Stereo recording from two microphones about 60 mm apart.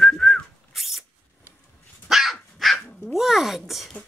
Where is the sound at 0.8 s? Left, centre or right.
Centre.